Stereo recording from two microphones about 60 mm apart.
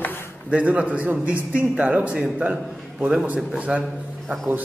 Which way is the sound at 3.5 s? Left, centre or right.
Centre.